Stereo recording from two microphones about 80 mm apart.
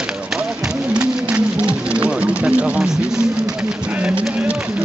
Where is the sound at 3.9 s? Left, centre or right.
Centre.